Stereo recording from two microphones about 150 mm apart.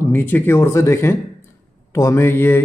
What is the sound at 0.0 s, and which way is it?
Speech, 15° left (ahead or behind).